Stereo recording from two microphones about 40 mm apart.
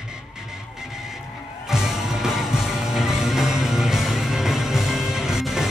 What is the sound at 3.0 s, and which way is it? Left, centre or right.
Music, centre.